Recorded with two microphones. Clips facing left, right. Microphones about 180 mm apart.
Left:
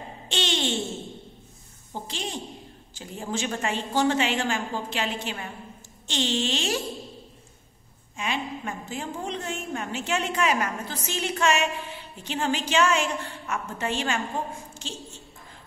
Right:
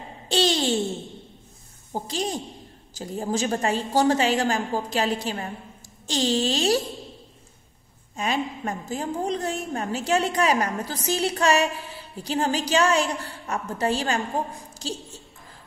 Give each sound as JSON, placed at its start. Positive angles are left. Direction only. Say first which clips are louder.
{"t": 0.3, "sound": "a sound", "louder": "right 6 dB", "side_deg": -35}
{"t": 1.9, "sound": "a woman's voice", "louder": "right 6 dB", "side_deg": -40}
{"t": 8.2, "sound": "a woman's voice", "louder": "right 4 dB", "side_deg": -40}